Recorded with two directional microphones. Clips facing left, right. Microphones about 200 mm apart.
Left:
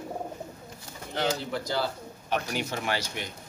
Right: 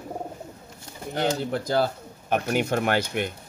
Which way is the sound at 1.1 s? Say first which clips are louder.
Right 4 dB; 50° right (ahead or behind).